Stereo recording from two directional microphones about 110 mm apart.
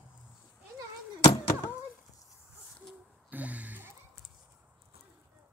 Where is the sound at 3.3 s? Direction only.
15° right (ahead or behind).